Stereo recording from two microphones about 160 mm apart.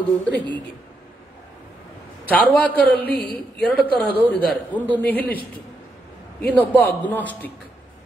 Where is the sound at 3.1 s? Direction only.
75° left (ahead or behind).